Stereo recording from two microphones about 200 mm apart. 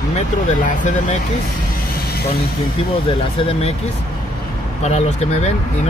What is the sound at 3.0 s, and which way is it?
Speech, 25° left (ahead or behind).